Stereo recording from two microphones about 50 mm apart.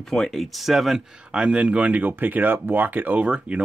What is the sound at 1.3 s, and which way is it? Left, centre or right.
Speech, centre.